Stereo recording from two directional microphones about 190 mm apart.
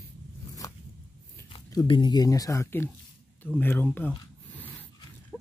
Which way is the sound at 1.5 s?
25° left (ahead or behind).